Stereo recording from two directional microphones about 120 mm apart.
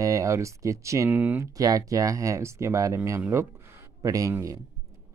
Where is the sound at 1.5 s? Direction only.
30° right (ahead or behind).